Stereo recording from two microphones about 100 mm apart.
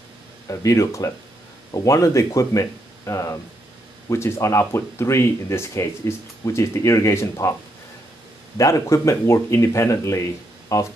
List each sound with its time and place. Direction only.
0.5 s speech: 35° left (ahead or behind)
8.5 s speech: 30° left (ahead or behind)